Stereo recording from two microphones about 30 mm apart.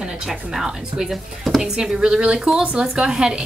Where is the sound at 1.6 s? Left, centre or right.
Right.